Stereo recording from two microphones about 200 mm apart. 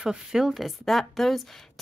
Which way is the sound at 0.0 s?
5° right (ahead or behind).